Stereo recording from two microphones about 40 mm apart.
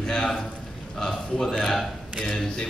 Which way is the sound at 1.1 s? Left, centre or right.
Centre.